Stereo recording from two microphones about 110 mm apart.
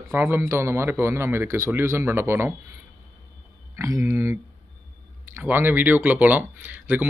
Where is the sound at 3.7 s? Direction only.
25° right (ahead or behind).